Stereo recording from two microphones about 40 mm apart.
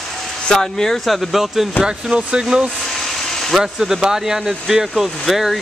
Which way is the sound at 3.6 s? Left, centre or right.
Centre.